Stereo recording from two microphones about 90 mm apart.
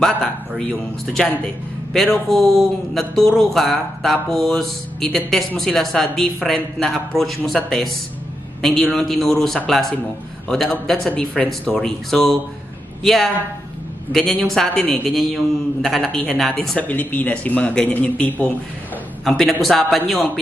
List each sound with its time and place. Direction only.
0.0 s a woman's voice: 5° left (ahead or behind)
11.1 s a woman's voice: 15° left (ahead or behind)
16.8 s speech: 20° left (ahead or behind)
19.2 s a woman's voice: 5° left (ahead or behind)